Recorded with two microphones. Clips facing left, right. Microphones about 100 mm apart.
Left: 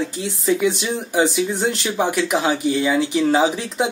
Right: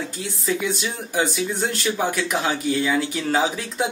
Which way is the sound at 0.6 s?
10° left (ahead or behind).